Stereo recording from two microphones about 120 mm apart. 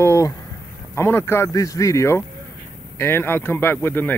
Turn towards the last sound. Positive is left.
turn(degrees=15)  # may be behind; listen again after turning